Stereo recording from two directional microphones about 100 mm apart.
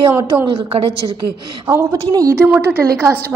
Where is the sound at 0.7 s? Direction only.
80° right.